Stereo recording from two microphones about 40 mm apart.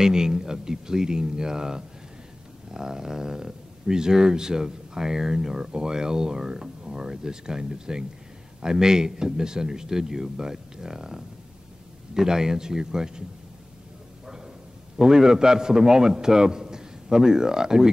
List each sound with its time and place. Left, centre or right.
0.0 s speech: centre
14.2 s a sound: centre
15.0 s speech: centre